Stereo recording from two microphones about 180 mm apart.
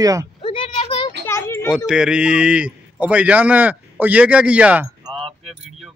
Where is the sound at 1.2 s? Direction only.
15° left (ahead or behind).